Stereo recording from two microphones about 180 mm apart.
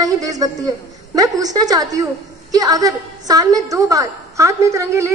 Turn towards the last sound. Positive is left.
turn(degrees=-15)  # may be behind; listen again after turning